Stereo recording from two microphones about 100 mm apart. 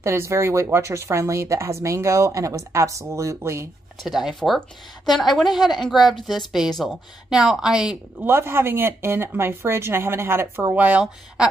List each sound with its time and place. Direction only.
0.0 s speech: 25° right (ahead or behind)
4.0 s a woman's voice: 5° right (ahead or behind)
8.2 s speech: 25° right (ahead or behind)